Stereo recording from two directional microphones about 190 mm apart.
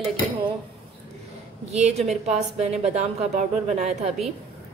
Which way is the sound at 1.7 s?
35° right (ahead or behind).